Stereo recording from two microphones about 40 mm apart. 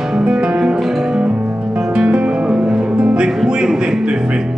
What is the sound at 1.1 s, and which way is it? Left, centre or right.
Music, right.